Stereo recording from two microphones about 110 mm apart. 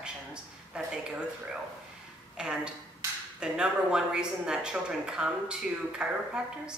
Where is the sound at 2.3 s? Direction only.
10° right (ahead or behind).